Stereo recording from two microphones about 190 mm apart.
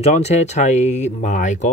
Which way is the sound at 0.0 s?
35° left (ahead or behind).